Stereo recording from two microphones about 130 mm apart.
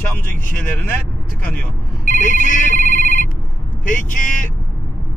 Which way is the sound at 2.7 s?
90° right.